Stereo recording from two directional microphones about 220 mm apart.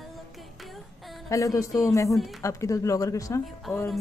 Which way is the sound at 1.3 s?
15° left (ahead or behind).